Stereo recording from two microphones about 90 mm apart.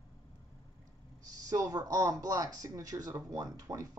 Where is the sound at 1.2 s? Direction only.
40° right (ahead or behind).